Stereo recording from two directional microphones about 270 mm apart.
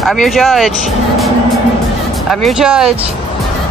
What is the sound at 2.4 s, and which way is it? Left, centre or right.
Speech, centre.